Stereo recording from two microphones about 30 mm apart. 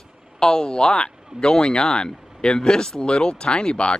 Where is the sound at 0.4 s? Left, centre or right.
Left.